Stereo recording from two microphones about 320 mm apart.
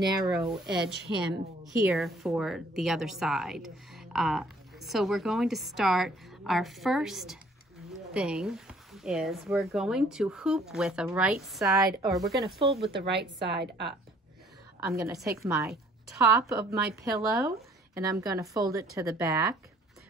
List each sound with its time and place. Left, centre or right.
0.3 s a woman's voice: centre
12.4 s a woman's voice: centre
13.0 s a woman's voice: right
14.9 s a woman's voice: centre